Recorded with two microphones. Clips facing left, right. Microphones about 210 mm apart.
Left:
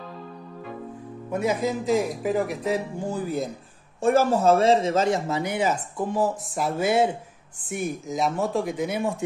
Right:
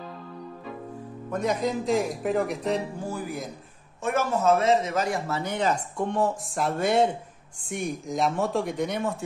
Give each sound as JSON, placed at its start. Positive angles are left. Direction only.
{"t": 1.3, "sound": "speech", "side_deg": 5}
{"t": 3.0, "sound": "speech", "side_deg": 20}
{"t": 5.4, "sound": "speech", "side_deg": 10}